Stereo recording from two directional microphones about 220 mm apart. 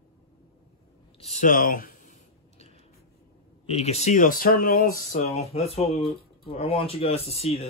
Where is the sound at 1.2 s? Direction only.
35° left (ahead or behind).